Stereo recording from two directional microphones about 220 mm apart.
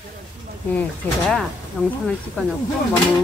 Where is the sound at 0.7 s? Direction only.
5° left (ahead or behind).